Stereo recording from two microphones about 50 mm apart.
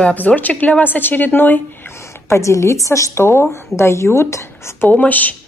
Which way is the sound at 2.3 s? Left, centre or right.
Left.